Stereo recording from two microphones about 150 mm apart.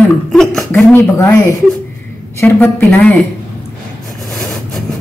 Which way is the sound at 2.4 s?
15° left (ahead or behind).